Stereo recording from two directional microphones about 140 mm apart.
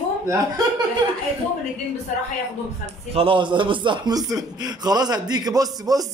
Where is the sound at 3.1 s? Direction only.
40° right (ahead or behind).